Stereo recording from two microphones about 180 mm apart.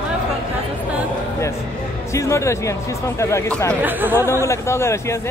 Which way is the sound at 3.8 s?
10° right (ahead or behind).